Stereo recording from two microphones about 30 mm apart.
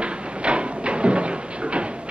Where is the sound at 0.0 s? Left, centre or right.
Right.